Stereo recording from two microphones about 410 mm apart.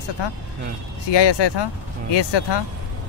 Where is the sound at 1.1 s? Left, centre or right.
Left.